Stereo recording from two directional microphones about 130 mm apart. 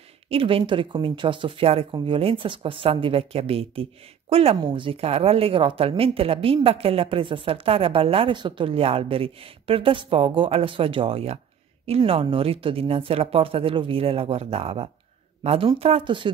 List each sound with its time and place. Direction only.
0.3 s speech: 45° right (ahead or behind)